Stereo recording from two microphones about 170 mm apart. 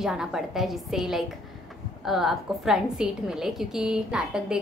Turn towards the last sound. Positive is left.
turn(degrees=-5)  # may be behind; listen again after turning